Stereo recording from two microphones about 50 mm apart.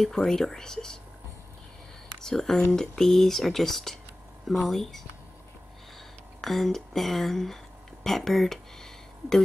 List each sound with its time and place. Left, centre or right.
0.0 s speech: centre
2.2 s speech: centre
6.4 s speech: centre
8.0 s a sound: centre